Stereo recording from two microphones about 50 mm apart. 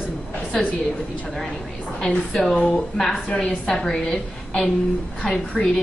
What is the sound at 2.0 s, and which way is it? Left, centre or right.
A woman's voice, centre.